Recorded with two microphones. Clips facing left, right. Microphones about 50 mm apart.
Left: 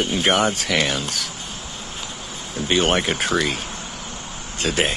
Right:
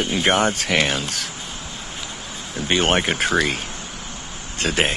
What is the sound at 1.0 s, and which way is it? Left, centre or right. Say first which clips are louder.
Speech: even; right.